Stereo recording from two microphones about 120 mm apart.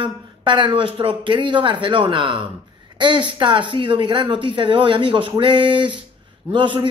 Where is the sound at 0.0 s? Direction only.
40° right (ahead or behind).